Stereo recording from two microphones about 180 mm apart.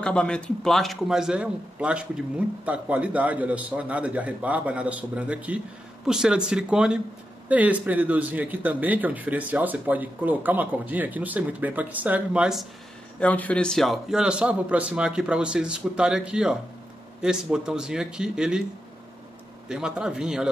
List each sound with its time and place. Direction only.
0.0 s a man's voice: 5° left (ahead or behind)
13.2 s a man's voice: 10° left (ahead or behind)
19.7 s a man's voice: 5° right (ahead or behind)